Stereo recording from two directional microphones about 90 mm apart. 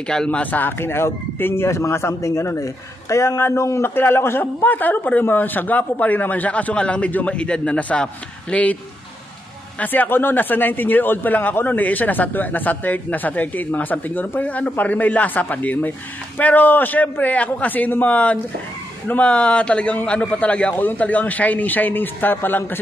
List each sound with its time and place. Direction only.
0.0 s speech: 10° left (ahead or behind)
9.8 s a man's voice: 20° left (ahead or behind)